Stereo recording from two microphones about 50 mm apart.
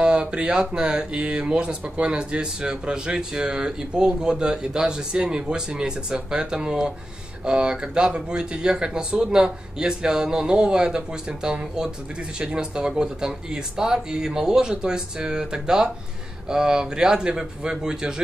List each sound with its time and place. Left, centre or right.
0.0 s speech: centre